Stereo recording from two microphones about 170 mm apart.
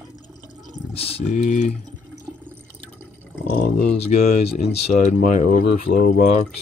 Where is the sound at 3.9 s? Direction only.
40° left (ahead or behind).